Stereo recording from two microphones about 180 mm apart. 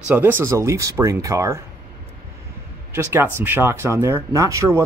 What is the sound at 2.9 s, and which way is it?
Speech, 15° right (ahead or behind).